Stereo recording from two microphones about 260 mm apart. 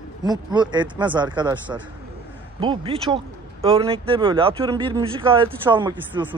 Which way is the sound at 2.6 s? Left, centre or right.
Centre.